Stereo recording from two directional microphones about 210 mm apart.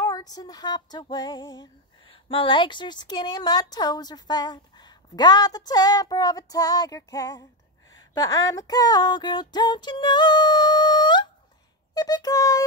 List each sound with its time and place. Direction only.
0.0 s female singing: 20° left (ahead or behind)
8.1 s a sound: 15° left (ahead or behind)
11.9 s speech: 20° left (ahead or behind)